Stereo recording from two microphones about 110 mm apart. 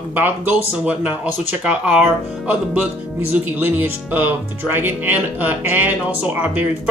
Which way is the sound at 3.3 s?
15° right (ahead or behind).